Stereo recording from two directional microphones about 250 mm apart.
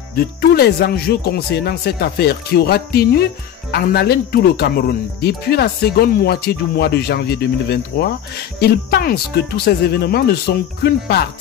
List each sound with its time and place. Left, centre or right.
0.1 s speech: left